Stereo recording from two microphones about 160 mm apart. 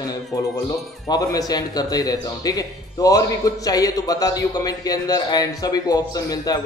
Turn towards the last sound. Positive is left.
turn(degrees=25)  # may be behind; listen again after turning